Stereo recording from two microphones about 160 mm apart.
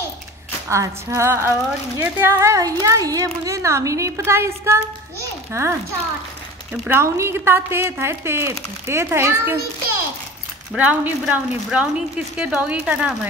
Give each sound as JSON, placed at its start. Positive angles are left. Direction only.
{"t": 0.7, "sound": "speech", "side_deg": -15}
{"t": 6.9, "sound": "speech", "side_deg": -15}
{"t": 10.8, "sound": "speech", "side_deg": -10}